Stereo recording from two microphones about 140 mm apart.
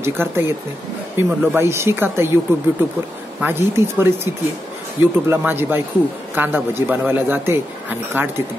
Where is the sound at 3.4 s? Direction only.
15° right (ahead or behind).